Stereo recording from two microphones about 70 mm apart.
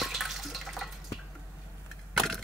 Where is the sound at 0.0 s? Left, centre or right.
Centre.